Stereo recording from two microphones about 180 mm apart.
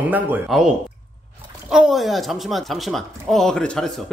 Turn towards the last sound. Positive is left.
turn(degrees=5)  # may be behind; listen again after turning